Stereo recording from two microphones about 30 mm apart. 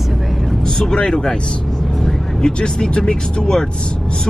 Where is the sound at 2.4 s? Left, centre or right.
Left.